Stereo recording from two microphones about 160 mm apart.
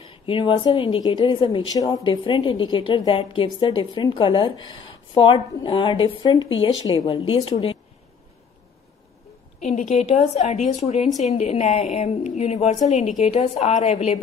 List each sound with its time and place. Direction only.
0.3 s a woman's voice: 30° left (ahead or behind)
9.6 s a woman's voice: 45° left (ahead or behind)